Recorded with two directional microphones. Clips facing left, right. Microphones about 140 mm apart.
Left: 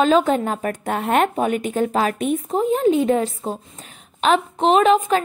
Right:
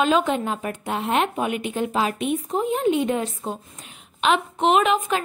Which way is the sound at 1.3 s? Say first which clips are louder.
Left 4 dB; 40° left (ahead or behind).